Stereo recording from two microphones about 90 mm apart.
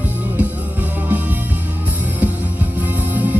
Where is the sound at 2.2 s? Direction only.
20° right (ahead or behind).